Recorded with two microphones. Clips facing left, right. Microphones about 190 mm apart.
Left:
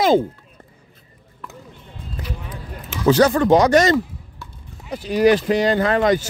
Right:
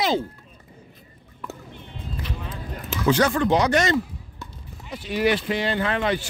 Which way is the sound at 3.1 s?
40° left (ahead or behind).